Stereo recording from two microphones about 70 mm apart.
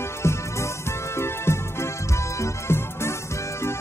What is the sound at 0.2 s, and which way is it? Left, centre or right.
Music, left.